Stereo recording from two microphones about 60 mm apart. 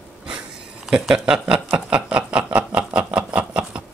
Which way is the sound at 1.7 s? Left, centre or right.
Right.